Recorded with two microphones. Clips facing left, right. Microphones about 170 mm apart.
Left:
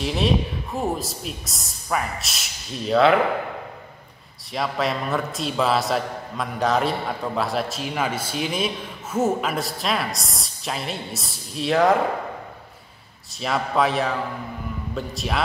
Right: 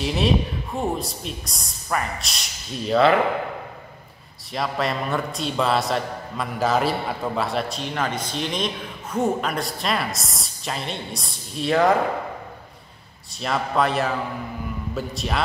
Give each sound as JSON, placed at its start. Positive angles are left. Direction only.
{"t": 0.0, "sound": "a man's voice", "side_deg": 0}
{"t": 4.5, "sound": "a man's voice", "side_deg": 0}
{"t": 13.4, "sound": "a man's voice", "side_deg": 0}